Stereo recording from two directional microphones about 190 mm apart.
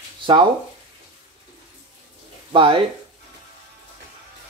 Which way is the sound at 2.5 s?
25° right (ahead or behind).